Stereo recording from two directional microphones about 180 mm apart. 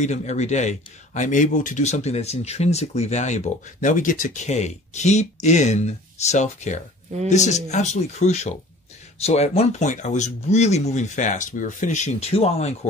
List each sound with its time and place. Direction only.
0.0 s a man's voice: 40° left (ahead or behind)